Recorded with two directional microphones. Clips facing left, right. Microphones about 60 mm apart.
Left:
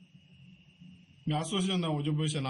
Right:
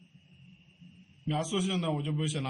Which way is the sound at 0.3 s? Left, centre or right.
Right.